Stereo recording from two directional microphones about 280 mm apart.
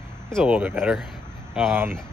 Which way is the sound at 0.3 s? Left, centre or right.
Centre.